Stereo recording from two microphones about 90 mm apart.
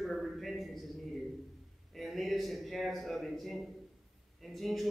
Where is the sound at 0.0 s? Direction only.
Centre (ahead or behind).